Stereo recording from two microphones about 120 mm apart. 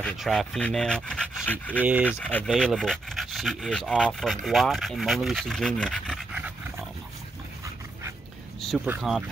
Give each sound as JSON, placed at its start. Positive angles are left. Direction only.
{"t": 0.0, "sound": "dog", "side_deg": 5}
{"t": 1.8, "sound": "speech", "side_deg": -15}
{"t": 2.0, "sound": "dog", "side_deg": 15}
{"t": 2.4, "sound": "speech", "side_deg": 0}
{"t": 8.5, "sound": "a sound", "side_deg": 5}
{"t": 9.1, "sound": "speech", "side_deg": 0}